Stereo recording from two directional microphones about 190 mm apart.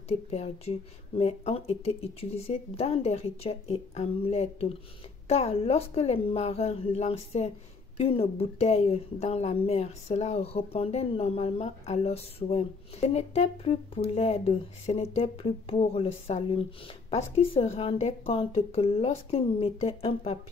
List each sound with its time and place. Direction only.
0.3 s a woman's voice: 35° left (ahead or behind)